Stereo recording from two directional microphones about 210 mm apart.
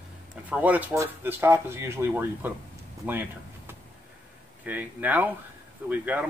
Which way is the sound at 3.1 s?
10° right (ahead or behind).